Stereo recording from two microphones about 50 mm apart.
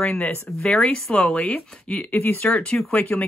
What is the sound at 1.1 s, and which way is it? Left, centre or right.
Speech, left.